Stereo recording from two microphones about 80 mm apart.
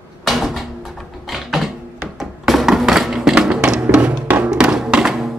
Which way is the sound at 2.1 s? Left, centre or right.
Centre.